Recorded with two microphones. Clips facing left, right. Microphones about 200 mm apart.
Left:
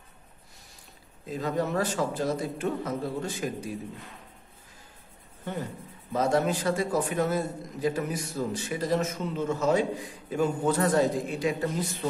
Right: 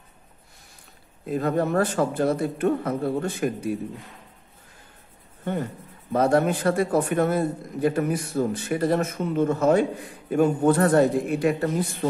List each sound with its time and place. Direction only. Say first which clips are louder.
1.2 s a man's voice: right 5 dB; 55° right (ahead or behind)
5.4 s a man's voice: right 6 dB; 55° right (ahead or behind)